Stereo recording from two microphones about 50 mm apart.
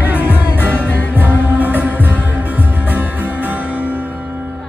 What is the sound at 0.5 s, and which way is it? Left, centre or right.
Music, left.